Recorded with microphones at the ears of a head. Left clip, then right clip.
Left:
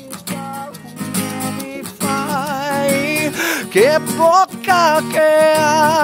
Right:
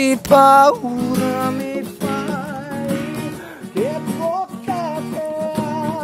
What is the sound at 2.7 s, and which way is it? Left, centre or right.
Music, left.